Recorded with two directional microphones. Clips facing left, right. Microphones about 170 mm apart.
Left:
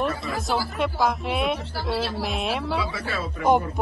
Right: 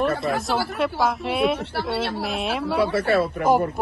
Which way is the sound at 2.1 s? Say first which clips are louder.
Right 1 dB; centre (ahead or behind).